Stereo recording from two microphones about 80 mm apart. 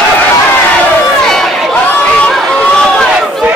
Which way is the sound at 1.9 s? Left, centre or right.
Centre.